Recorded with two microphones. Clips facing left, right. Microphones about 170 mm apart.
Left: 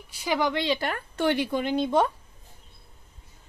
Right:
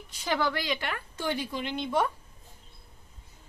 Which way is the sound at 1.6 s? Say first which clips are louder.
Left 8 dB; 45° left (ahead or behind).